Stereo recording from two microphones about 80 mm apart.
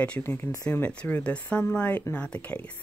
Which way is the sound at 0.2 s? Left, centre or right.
Left.